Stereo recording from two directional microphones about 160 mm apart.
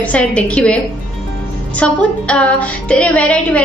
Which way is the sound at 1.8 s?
5° left (ahead or behind).